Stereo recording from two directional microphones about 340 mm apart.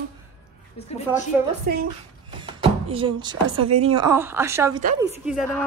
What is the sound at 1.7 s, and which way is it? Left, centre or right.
Speech, right.